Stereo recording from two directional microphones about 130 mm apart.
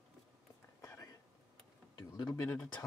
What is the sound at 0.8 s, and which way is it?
Whispering, 25° left (ahead or behind).